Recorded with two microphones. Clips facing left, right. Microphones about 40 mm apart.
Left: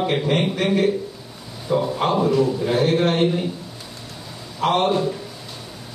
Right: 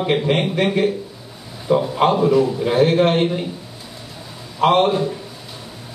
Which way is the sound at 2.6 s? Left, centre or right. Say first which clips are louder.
Right 4 dB; right.